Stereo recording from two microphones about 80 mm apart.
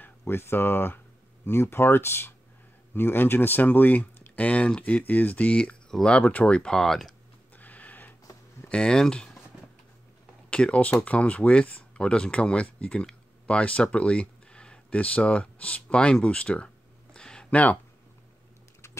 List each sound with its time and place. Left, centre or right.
0.0 s speech: left; by 7.2 s centre
7.5 s a sound: centre
8.6 s speech: centre
10.5 s speech: centre